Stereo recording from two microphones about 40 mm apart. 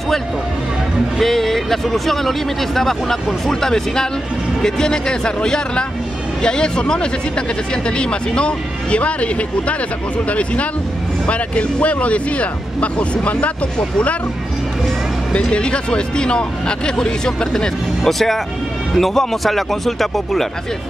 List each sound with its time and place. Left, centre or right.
1.2 s speech: centre; by 13.5 s left
15.3 s speech: left
18.0 s speech: centre